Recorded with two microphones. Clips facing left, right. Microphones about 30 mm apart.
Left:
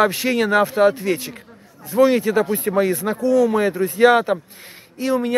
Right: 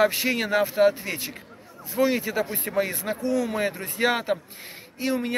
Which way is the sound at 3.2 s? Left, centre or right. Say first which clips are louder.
Left 10 dB; right.